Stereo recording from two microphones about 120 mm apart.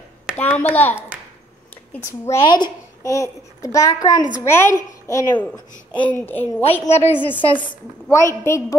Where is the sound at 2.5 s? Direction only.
40° left (ahead or behind).